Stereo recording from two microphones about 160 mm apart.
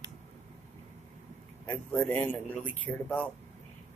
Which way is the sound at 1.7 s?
10° left (ahead or behind).